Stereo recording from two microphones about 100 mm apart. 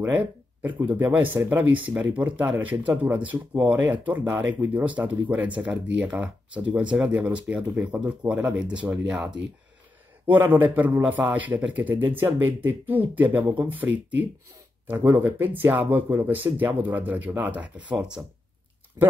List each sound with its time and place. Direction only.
0.1 s a man's voice: 15° right (ahead or behind)
10.3 s a man's voice: 20° right (ahead or behind)
14.9 s a man's voice: 20° right (ahead or behind)
19.0 s speech: 35° right (ahead or behind)